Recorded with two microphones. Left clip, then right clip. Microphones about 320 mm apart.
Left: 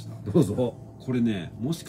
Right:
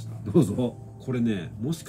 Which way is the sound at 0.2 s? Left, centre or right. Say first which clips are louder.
Even; centre.